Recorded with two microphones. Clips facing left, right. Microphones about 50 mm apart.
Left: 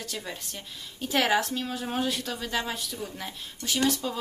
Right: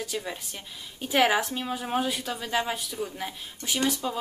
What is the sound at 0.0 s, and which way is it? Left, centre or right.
Speech, centre.